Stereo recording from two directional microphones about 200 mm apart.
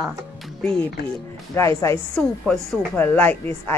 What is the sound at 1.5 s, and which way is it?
A woman's voice, 15° left (ahead or behind).